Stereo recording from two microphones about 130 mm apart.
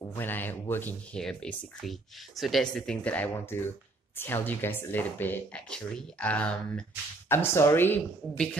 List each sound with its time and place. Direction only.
0.0 s speech: 15° left (ahead or behind)